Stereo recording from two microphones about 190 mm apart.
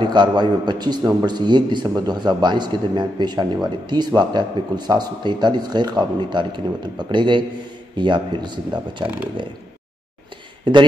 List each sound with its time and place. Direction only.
0.0 s speech: 25° right (ahead or behind)
10.6 s speech: 25° right (ahead or behind)